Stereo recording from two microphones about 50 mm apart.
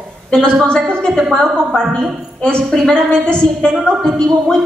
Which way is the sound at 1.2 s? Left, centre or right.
Centre.